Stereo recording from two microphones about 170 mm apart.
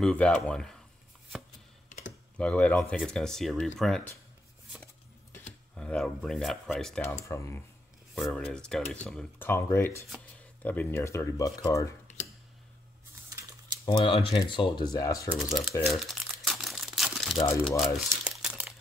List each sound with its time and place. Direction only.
0.0 s speech: 5° left (ahead or behind)
1.9 s computer keyboard: 50° left (ahead or behind)
2.3 s speech: 5° left (ahead or behind)
5.8 s speech: 5° left (ahead or behind)
7.2 s speech: 15° left (ahead or behind)
13.8 s speech: 30° left (ahead or behind)
15.3 s speech: centre (ahead or behind)
15.8 s crumpling: centre (ahead or behind)